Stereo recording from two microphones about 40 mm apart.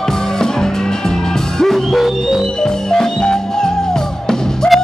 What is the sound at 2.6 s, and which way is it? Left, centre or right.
Music, centre.